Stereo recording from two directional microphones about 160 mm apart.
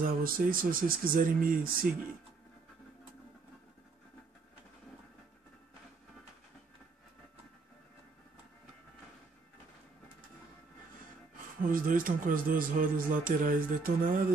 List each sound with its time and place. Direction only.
0.0 s speech: 60° right (ahead or behind)
11.6 s speech: 60° right (ahead or behind)